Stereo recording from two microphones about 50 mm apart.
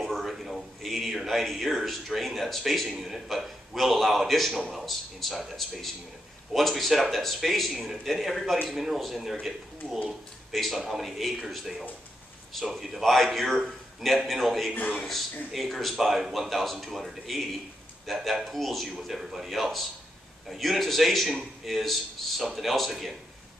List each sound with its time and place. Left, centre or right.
0.0 s a man's voice: centre
14.7 s a man's voice: left
15.0 s a man's voice: centre